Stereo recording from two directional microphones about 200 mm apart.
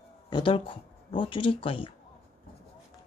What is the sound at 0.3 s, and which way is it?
Speech, 25° left (ahead or behind).